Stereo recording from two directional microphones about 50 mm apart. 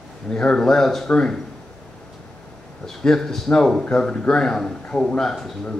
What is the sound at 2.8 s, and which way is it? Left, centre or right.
Speech, centre.